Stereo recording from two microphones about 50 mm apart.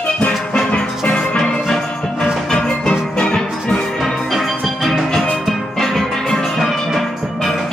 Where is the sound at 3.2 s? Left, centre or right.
Centre.